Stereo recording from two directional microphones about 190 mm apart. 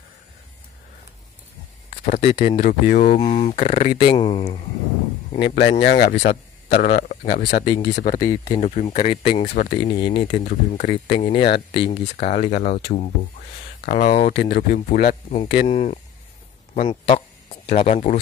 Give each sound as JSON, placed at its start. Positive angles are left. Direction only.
{"t": 1.9, "sound": "speech", "side_deg": 35}
{"t": 2.5, "sound": "speech", "side_deg": 45}
{"t": 3.2, "sound": "speech", "side_deg": 30}
{"t": 5.4, "sound": "speech", "side_deg": 60}
{"t": 8.2, "sound": "speech", "side_deg": 20}
{"t": 8.5, "sound": "speech", "side_deg": 30}
{"t": 9.4, "sound": "speech", "side_deg": 40}
{"t": 9.8, "sound": "speech", "side_deg": 25}
{"t": 10.4, "sound": "speech", "side_deg": 45}
{"t": 14.3, "sound": "speech", "side_deg": 60}
{"t": 15.7, "sound": "speech", "side_deg": 35}